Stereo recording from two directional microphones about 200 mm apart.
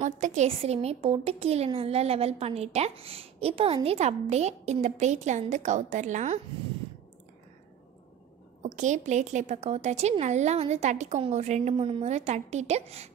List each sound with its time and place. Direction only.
0.2 s a woman's voice: 35° right (ahead or behind)
8.6 s a woman's voice: 35° right (ahead or behind)